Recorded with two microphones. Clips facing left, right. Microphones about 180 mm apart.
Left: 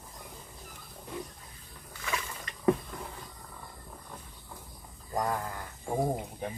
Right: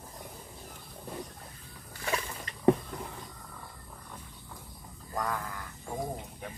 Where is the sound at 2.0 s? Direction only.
30° right (ahead or behind).